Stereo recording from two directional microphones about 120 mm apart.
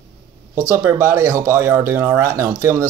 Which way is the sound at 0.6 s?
25° right (ahead or behind).